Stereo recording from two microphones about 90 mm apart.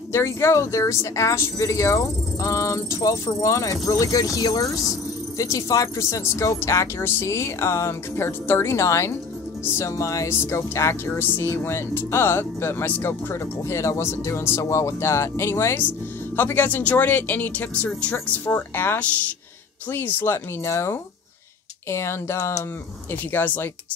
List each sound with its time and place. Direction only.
0.1 s speech: 30° left (ahead or behind)
23.3 s speech: 20° left (ahead or behind)